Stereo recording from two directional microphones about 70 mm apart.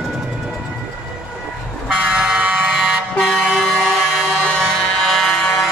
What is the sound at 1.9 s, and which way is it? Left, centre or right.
Vehicle, centre.